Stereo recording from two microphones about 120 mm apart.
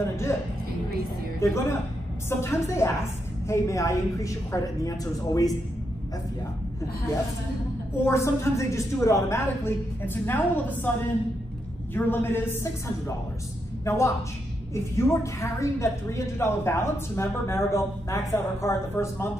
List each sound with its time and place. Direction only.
0.0 s a woman's voice: 20° left (ahead or behind)
1.4 s a woman's voice: 20° left (ahead or behind)
8.0 s a woman's voice: 20° left (ahead or behind)
11.9 s a woman's voice: 20° left (ahead or behind)